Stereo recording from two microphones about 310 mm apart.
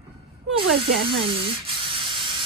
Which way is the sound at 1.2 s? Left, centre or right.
Centre.